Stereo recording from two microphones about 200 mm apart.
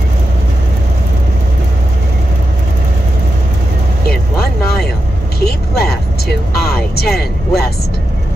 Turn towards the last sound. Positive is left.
turn(degrees=50)  # may be behind; listen again after turning